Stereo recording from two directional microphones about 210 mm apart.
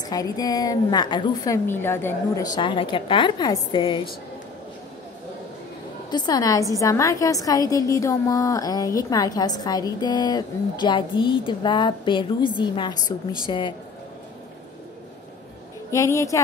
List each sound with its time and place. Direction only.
0.0 s a woman's voice: 20° left (ahead or behind)
6.0 s a woman's voice: 20° left (ahead or behind)
15.9 s a woman's voice: 15° left (ahead or behind)